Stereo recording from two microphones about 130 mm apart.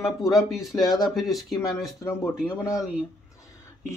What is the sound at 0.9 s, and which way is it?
Speech, centre (ahead or behind).